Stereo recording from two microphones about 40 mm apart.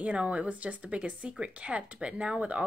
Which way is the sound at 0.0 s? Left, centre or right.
Right.